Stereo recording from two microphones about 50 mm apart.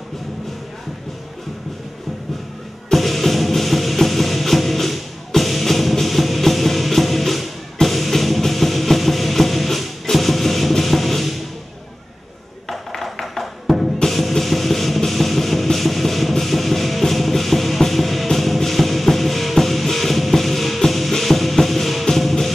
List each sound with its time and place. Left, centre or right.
2.9 s music: centre
12.6 s music: centre